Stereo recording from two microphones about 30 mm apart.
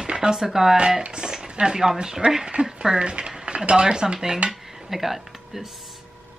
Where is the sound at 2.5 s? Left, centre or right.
Right.